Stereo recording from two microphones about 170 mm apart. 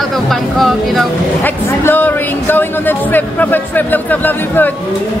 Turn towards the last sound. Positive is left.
turn(degrees=10)  # may be behind; listen again after turning